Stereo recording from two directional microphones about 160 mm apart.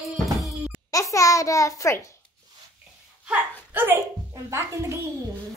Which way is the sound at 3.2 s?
10° right (ahead or behind).